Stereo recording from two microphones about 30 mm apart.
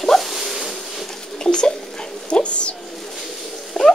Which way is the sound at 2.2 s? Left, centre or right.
Left.